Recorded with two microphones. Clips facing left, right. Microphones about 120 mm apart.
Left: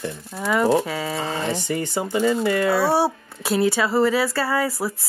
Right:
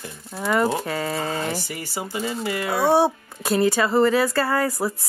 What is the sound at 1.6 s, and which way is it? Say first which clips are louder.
Speech: left 6 dB; 25° left (ahead or behind).